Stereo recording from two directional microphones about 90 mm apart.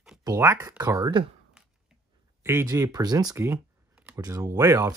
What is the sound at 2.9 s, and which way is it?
Speech, 45° right (ahead or behind).